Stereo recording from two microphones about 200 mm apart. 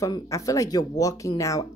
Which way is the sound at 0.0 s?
15° left (ahead or behind).